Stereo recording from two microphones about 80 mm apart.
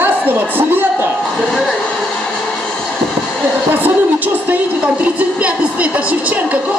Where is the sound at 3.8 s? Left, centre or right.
Right.